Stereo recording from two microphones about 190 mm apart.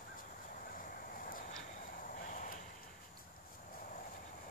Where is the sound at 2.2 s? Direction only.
40° left (ahead or behind).